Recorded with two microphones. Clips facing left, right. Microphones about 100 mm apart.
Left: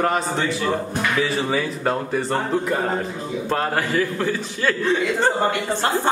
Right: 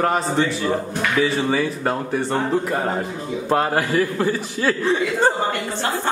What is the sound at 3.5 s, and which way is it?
A man's voice, 10° right (ahead or behind).